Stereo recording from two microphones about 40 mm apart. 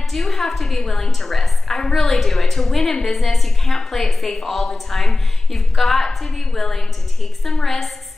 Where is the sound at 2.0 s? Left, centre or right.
Centre.